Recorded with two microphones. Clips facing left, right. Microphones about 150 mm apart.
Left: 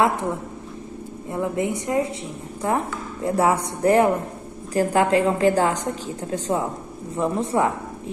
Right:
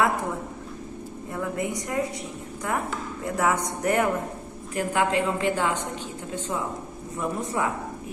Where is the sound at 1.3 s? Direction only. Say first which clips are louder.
Left 5 dB; 25° left (ahead or behind).